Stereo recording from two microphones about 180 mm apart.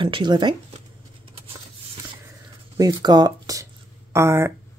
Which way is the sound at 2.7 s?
20° right (ahead or behind).